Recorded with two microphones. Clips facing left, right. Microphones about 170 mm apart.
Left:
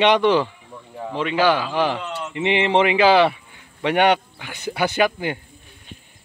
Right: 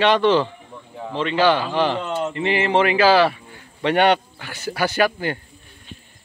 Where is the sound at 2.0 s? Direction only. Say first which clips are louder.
Right 6 dB; 50° right (ahead or behind).